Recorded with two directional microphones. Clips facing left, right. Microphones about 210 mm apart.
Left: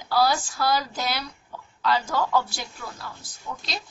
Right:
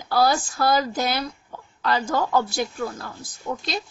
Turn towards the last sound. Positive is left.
turn(degrees=-45)  # may be behind; listen again after turning